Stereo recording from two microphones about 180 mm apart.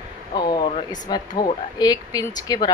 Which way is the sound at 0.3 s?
25° left (ahead or behind).